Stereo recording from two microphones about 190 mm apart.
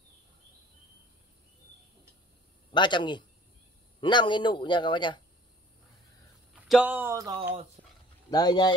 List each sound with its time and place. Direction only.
2.7 s a man's voice: 25° left (ahead or behind)
6.5 s speech: 5° right (ahead or behind)
7.8 s dog: 45° right (ahead or behind)
8.3 s a man's voice: 20° left (ahead or behind)